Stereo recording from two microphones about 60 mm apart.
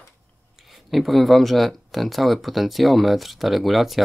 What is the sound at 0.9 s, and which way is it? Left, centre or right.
Speech, centre.